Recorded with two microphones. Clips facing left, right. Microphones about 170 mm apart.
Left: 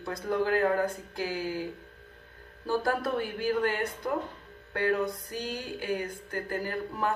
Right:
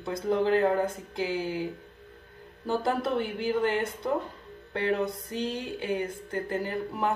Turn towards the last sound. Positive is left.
turn(degrees=-20)  # may be behind; listen again after turning